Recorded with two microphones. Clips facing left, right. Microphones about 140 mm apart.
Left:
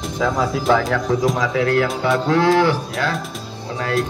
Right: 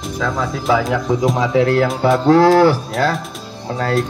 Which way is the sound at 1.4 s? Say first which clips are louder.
Right 3 dB; 30° right (ahead or behind).